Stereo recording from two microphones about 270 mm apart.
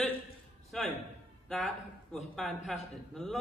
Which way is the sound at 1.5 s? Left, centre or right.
Centre.